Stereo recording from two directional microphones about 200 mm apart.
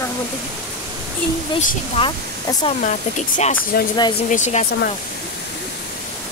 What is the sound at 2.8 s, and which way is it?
Speech, 35° left (ahead or behind).